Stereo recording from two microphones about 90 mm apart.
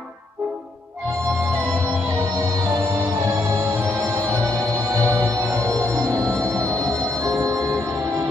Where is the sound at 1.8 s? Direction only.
30° right (ahead or behind).